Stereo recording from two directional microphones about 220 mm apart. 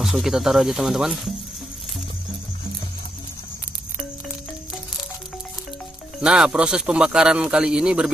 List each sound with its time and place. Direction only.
0.0 s speech: centre (ahead or behind)
6.2 s speech: 5° right (ahead or behind)